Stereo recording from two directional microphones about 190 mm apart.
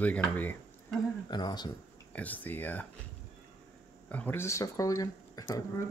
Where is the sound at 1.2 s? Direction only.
20° left (ahead or behind).